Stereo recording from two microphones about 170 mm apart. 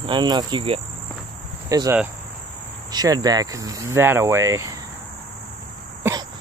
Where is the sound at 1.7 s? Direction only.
20° right (ahead or behind).